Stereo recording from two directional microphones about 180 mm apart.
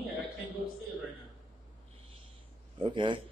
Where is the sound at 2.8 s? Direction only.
25° right (ahead or behind).